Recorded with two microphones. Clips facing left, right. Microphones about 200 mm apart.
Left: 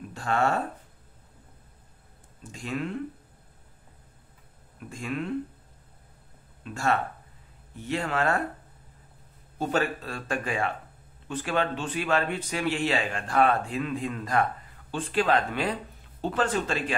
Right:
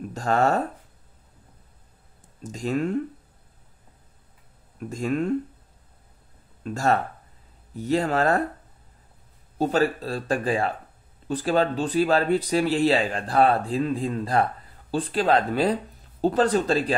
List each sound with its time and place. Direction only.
0.1 s speech: 40° right (ahead or behind)
2.4 s speech: 40° right (ahead or behind)
4.7 s speech: 40° right (ahead or behind)
6.6 s speech: 40° right (ahead or behind)
9.6 s speech: 35° right (ahead or behind)